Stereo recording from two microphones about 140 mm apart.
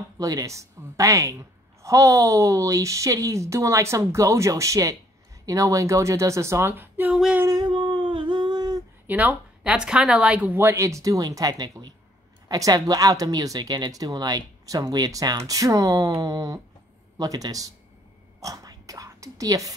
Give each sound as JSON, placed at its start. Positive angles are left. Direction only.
{"t": 0.2, "sound": "speech", "side_deg": -25}
{"t": 7.3, "sound": "a sound", "side_deg": -20}
{"t": 7.6, "sound": "humming", "side_deg": -35}
{"t": 9.0, "sound": "speech", "side_deg": -10}
{"t": 18.4, "sound": "whispering", "side_deg": -25}